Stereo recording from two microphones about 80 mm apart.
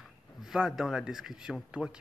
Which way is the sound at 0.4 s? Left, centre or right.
Centre.